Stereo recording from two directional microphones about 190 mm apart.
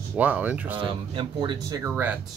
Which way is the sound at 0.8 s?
25° right (ahead or behind).